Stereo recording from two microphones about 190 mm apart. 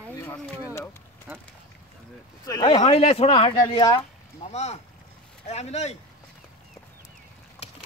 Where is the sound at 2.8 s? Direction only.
35° left (ahead or behind).